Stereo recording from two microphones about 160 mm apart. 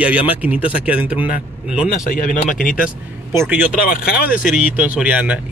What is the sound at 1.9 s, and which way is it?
Speech, 55° left (ahead or behind).